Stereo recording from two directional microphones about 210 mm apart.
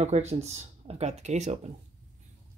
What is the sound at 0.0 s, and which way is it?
Speech, 30° right (ahead or behind).